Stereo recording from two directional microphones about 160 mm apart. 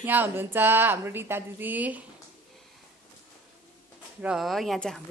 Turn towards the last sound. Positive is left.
turn(degrees=0)  # may be behind; listen again after turning